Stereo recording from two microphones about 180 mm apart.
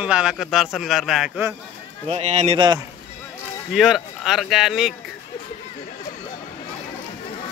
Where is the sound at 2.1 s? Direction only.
40° right (ahead or behind).